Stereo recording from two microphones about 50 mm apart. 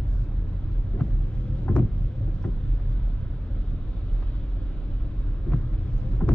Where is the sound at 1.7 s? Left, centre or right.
Centre.